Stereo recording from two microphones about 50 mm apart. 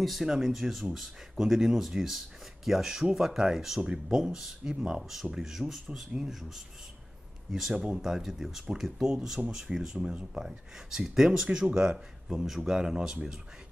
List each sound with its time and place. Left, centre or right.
0.0 s speech: centre
7.5 s speech: centre